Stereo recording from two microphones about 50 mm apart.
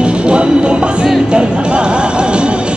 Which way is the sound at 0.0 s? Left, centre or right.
Right.